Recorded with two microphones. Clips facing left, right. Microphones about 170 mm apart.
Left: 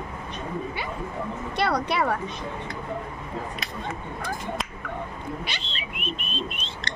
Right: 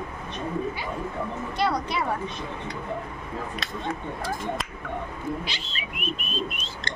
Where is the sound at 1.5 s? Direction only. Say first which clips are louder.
Left 2 dB; 65° left (ahead or behind).